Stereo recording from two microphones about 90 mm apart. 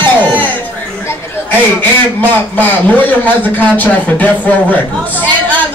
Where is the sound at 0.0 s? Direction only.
20° left (ahead or behind).